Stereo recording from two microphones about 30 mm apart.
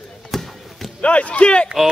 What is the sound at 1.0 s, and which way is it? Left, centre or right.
Speech, left.